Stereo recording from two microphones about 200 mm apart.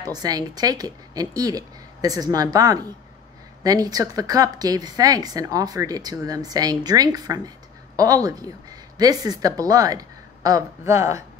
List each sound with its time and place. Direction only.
0.0 s speech: 20° right (ahead or behind)